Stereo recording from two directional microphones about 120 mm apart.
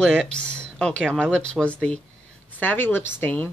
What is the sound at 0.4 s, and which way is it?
Speech, 5° left (ahead or behind).